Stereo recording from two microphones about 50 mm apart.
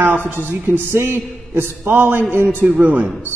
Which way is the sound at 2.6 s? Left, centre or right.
Right.